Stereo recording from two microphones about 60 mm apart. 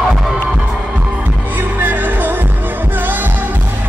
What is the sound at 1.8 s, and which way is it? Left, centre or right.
Music, right.